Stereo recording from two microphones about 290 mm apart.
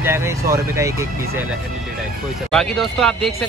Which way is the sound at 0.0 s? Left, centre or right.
Centre.